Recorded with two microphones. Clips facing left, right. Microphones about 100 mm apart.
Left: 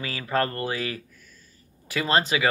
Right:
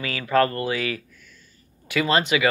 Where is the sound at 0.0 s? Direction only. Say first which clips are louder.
Right 5 dB; 30° left (ahead or behind).